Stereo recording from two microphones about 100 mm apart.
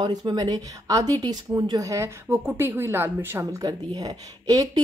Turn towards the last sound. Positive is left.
turn(degrees=-40)  # may be behind; listen again after turning